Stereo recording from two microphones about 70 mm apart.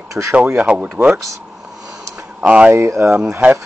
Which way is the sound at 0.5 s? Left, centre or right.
Centre.